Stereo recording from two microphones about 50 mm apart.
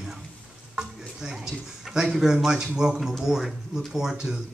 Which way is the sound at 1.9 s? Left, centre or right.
Centre.